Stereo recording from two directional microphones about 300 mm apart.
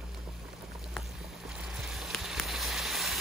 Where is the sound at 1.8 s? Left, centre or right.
Centre.